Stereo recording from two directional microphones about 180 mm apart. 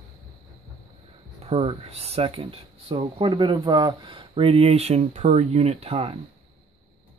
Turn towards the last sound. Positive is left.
turn(degrees=-30)  # may be behind; listen again after turning